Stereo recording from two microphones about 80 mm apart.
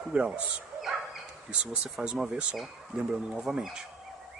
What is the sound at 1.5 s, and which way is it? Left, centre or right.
Speech, centre.